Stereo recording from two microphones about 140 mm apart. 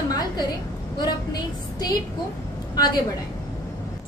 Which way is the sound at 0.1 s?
30° left (ahead or behind).